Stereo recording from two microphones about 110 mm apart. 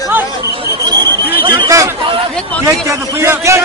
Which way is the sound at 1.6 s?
30° right (ahead or behind).